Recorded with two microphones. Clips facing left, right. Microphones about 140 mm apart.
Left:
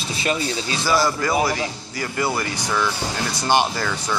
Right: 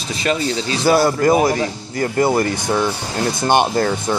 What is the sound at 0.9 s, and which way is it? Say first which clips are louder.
Speech: right 7 dB; 55° right (ahead or behind).